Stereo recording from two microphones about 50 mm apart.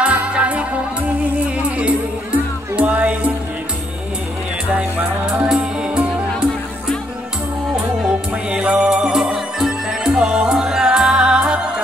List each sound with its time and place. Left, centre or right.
0.0 s music: right
4.7 s music: centre
8.3 s music: right
9.1 s music: centre